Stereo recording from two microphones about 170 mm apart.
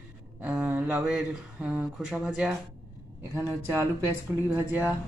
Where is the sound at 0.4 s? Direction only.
5° right (ahead or behind).